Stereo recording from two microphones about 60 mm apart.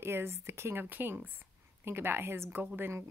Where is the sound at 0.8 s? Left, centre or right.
Right.